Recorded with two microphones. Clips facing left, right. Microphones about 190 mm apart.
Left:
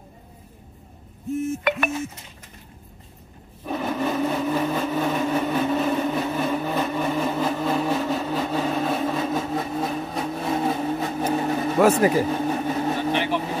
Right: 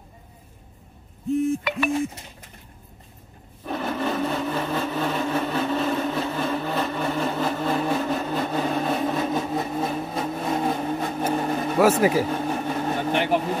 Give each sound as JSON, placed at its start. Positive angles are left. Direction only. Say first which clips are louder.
{"t": 1.6, "sound": "a sound", "louder": "left 2 dB", "side_deg": 55}
{"t": 3.6, "sound": "blender", "louder": "left 1 dB", "side_deg": 5}
{"t": 7.4, "sound": "vehicle", "louder": "left 1 dB", "side_deg": 0}
{"t": 12.6, "sound": "vehicle", "louder": "left 2 dB", "side_deg": 10}
{"t": 13.1, "sound": "vehicle", "louder": "right 5 dB", "side_deg": -50}